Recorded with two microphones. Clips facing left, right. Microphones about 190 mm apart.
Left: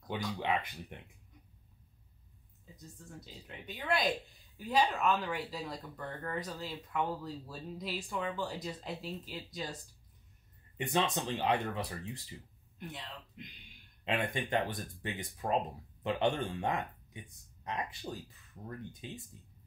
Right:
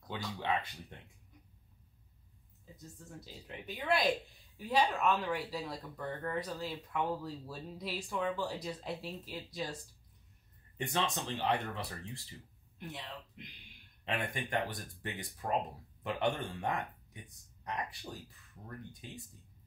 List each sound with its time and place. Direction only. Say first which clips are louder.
0.1 s speech: left 2 dB; 15° left (ahead or behind)
3.0 s speech: even; centre (ahead or behind)
10.9 s speech: left 4 dB; 15° left (ahead or behind)
12.7 s speech: right 1 dB; centre (ahead or behind)
14.0 s speech: left 3 dB; 20° left (ahead or behind)